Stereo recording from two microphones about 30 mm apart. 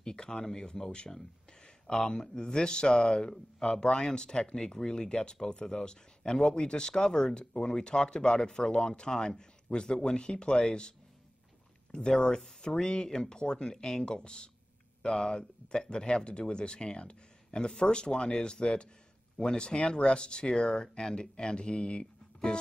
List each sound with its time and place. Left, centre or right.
0.0 s speech: left
11.9 s speech: left